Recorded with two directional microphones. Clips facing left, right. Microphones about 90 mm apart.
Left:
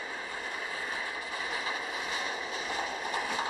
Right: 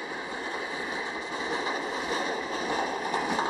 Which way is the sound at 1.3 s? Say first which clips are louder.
Right 6 dB; 25° right (ahead or behind).